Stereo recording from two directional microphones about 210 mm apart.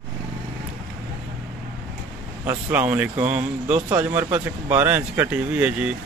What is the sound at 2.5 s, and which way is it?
Speech, 10° right (ahead or behind).